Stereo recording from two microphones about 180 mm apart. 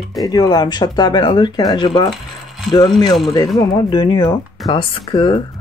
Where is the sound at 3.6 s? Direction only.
25° left (ahead or behind).